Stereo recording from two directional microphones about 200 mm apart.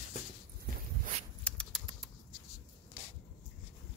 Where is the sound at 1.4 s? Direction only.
5° left (ahead or behind).